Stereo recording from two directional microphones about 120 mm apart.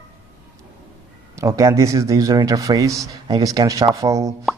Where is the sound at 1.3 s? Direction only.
25° right (ahead or behind).